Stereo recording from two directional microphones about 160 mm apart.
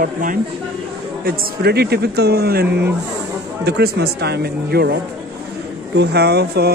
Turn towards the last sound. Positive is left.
turn(degrees=-90)